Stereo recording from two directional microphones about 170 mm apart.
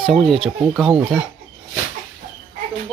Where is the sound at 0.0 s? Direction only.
Centre (ahead or behind).